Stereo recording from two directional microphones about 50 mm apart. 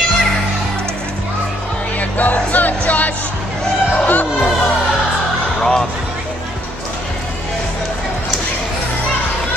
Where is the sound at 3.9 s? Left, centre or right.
Left.